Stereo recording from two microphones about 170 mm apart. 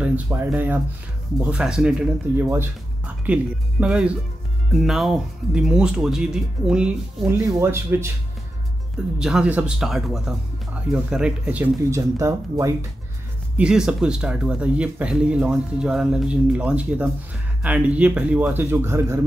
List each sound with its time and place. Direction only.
0.0 s speech: 10° right (ahead or behind)
3.8 s speech: 5° right (ahead or behind)
7.2 s speech: 15° right (ahead or behind)
9.2 s speech: 5° right (ahead or behind)
11.9 s speech: 20° right (ahead or behind)
13.6 s speech: 5° right (ahead or behind)